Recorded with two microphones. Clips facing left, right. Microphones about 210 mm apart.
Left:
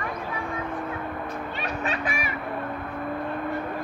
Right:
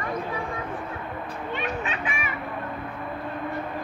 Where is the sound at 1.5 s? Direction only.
40° left (ahead or behind).